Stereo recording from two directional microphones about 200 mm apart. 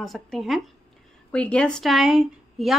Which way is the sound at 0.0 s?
Centre (ahead or behind).